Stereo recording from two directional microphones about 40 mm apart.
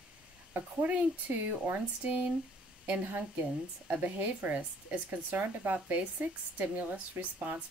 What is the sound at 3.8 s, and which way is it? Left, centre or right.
A woman's voice, right.